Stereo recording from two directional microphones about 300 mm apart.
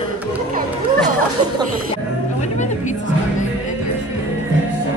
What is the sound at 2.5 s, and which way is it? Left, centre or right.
Music, left.